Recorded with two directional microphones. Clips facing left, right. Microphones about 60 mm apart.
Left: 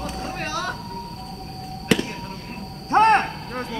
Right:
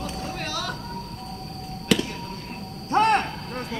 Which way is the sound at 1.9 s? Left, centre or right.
Left.